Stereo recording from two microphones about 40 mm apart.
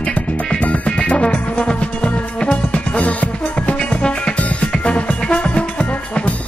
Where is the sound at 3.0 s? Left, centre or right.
Left.